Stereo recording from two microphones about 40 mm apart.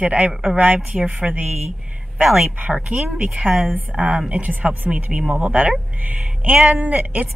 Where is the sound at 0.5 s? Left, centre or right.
Right.